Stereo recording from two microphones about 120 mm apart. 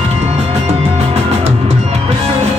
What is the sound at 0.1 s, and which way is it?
Music, 60° right (ahead or behind).